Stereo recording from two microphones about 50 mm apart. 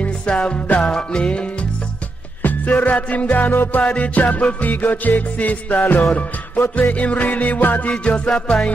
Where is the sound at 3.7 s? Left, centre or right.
Left.